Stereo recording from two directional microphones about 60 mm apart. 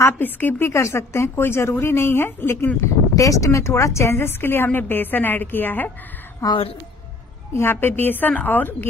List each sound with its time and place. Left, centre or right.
0.2 s speech: left
3.2 s a woman's voice: left
6.4 s a woman's voice: left
7.5 s a woman's voice: left